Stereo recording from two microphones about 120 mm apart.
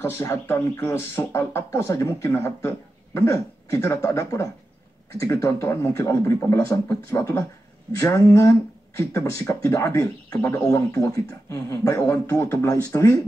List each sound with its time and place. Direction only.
0.0 s speech: 20° left (ahead or behind)